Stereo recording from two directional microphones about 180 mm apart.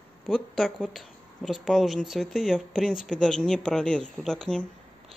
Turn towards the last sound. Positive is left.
turn(degrees=5)  # may be behind; listen again after turning